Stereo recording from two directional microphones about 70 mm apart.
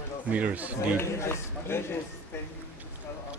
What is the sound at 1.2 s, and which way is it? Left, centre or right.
Speech, left.